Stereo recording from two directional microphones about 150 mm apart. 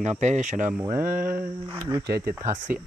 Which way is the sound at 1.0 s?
70° right (ahead or behind).